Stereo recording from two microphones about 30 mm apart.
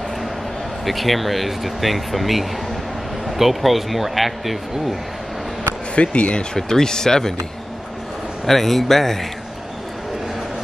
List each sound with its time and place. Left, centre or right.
0.8 s speech: centre
5.9 s speech: left
6.5 s speech: left
8.5 s a man's voice: centre